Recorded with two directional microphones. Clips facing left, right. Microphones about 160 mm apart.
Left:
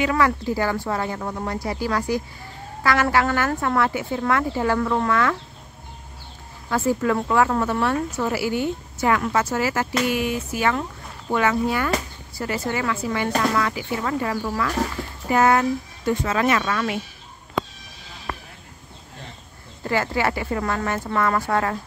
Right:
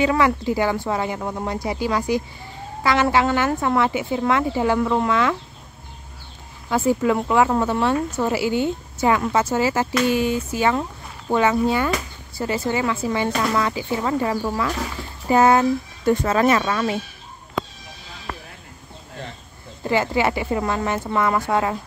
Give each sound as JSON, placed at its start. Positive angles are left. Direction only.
{"t": 0.0, "sound": "speech", "side_deg": -20}
{"t": 6.7, "sound": "speech", "side_deg": -15}
{"t": 16.1, "sound": "speech", "side_deg": -40}
{"t": 19.8, "sound": "speech", "side_deg": -20}